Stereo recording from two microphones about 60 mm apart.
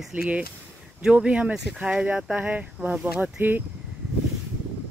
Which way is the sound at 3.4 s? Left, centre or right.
Right.